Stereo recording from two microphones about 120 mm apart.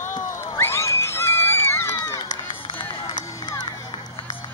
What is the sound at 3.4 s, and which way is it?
Run, 35° left (ahead or behind).